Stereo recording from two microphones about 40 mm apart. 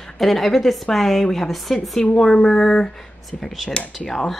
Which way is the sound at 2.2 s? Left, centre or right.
Left.